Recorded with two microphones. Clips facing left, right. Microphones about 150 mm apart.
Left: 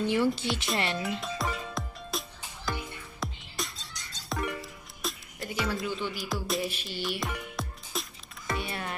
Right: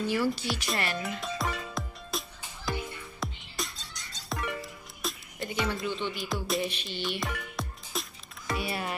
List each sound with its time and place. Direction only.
0.0 s a woman's voice: 20° left (ahead or behind)
1.2 s music: centre (ahead or behind)